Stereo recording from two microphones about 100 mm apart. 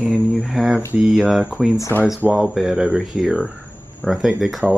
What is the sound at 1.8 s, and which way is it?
Speech, 25° left (ahead or behind).